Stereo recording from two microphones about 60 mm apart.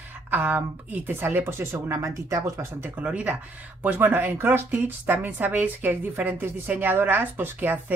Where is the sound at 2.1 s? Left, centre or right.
Right.